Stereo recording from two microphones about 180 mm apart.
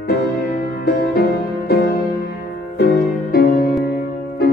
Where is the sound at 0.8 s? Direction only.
65° left (ahead or behind).